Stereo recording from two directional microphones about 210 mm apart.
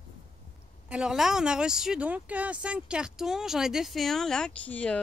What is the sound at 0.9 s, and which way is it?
Speech, 5° right (ahead or behind).